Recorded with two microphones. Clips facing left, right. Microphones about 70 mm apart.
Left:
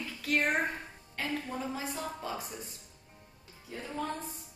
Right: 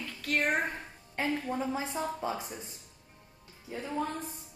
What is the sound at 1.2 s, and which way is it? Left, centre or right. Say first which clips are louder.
A woman's voice: right 4 dB; right.